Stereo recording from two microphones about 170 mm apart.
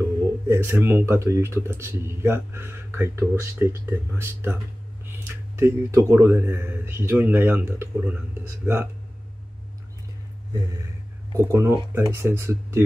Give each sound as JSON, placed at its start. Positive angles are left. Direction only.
{"t": 0.5, "sound": "speech", "side_deg": -15}
{"t": 10.5, "sound": "speech", "side_deg": -20}